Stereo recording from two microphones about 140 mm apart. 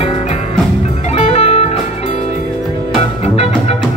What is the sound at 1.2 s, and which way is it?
Music, 50° left (ahead or behind).